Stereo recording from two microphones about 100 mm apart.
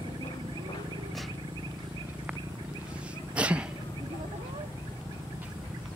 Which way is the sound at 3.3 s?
10° right (ahead or behind).